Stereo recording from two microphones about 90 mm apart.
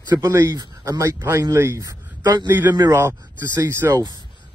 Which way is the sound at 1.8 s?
45° right (ahead or behind).